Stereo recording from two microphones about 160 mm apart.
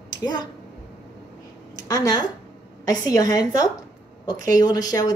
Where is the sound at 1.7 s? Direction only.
25° left (ahead or behind).